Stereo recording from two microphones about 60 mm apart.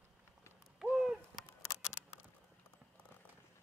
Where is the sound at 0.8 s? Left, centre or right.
Centre.